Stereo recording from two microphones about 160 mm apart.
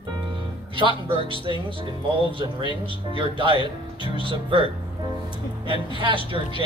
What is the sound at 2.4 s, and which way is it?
Speech, 30° right (ahead or behind).